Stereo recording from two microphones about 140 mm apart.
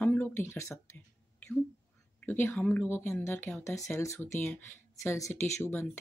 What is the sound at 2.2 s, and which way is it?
Speech, 15° left (ahead or behind).